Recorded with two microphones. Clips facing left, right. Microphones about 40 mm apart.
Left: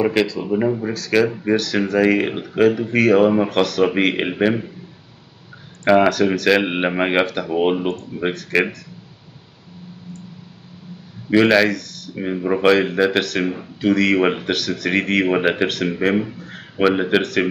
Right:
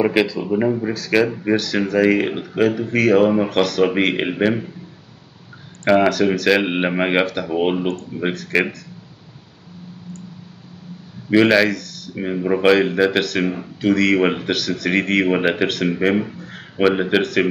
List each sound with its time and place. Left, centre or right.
0.0 s speech: centre
5.9 s speech: centre
11.2 s a man's voice: centre